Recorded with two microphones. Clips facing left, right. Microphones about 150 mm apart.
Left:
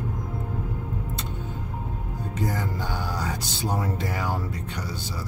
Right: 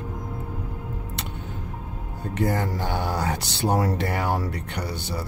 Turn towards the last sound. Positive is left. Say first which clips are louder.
# right 4 dB
turn(degrees=-65)  # may be behind; listen again after turning